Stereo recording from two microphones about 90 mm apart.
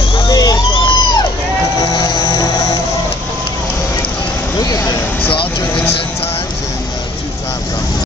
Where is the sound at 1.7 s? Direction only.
45° left (ahead or behind).